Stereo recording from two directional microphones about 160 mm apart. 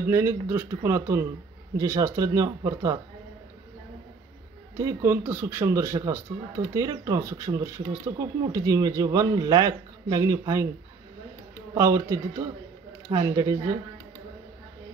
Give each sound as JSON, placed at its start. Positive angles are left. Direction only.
{"t": 0.1, "sound": "a man's voice", "side_deg": -15}
{"t": 4.7, "sound": "a man's voice", "side_deg": -15}
{"t": 11.7, "sound": "speech", "side_deg": -20}